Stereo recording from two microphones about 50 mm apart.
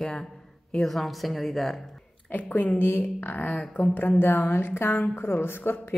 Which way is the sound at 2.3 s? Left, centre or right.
Left.